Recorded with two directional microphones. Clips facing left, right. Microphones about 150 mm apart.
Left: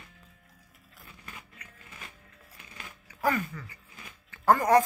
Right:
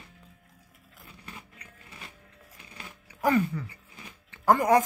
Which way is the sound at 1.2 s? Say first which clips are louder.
Right 2 dB; 30° right (ahead or behind).